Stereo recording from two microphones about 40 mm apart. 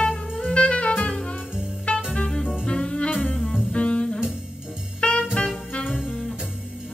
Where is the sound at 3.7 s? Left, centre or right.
Left.